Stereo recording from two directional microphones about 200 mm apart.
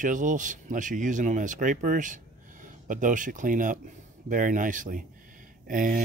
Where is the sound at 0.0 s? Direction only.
40° right (ahead or behind).